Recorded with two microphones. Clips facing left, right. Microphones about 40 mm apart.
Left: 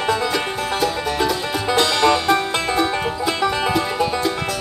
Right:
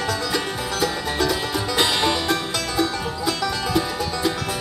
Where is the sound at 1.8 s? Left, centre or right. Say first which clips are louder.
Left 4 dB; centre.